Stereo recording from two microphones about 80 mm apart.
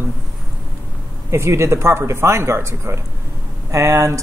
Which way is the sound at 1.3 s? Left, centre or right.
Right.